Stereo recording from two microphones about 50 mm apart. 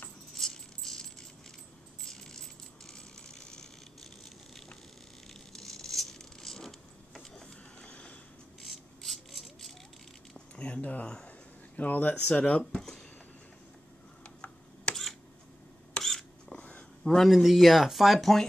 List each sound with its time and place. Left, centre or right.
0.3 s coin: centre
5.5 s patter: centre
7.3 s printer: centre
7.9 s a sound: left
8.6 s a sound: centre
10.5 s a sound: left
14.2 s tick: left
16.0 s camera: centre
17.0 s speech: centre